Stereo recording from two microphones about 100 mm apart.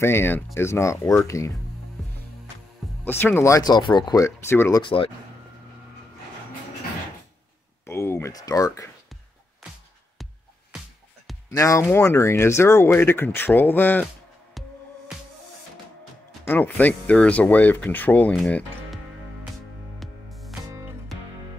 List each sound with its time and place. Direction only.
0.0 s speech: 25° left (ahead or behind)
3.1 s speech: 20° left (ahead or behind); by 4.2 s 45° left (ahead or behind)
4.2 s speech: 25° left (ahead or behind)
4.8 s speech: 65° left (ahead or behind)
7.8 s a sound: 25° left (ahead or behind)
11.5 s speech: 35° left (ahead or behind)
14.6 s music: centre (ahead or behind)
16.4 s speech: 20° left (ahead or behind)
20.0 s music: centre (ahead or behind)